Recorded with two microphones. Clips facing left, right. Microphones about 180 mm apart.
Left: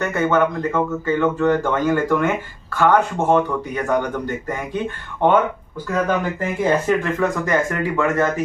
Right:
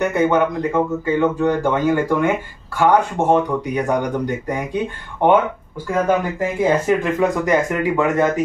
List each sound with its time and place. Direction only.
0.0 s speech: 15° right (ahead or behind)